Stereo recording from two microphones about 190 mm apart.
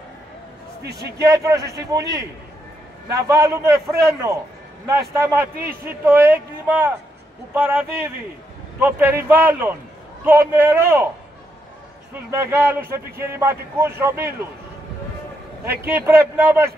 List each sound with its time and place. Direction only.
0.8 s speech: 60° right (ahead or behind)
1.2 s a man's voice: 15° right (ahead or behind)
3.1 s a man's voice: 15° right (ahead or behind)
12.1 s a man's voice: 15° right (ahead or behind)
15.6 s a man's voice: 10° right (ahead or behind)